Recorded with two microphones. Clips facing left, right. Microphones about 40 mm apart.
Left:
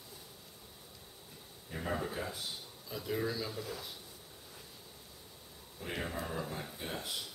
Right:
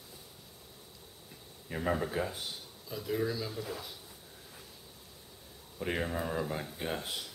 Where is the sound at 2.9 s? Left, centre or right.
Centre.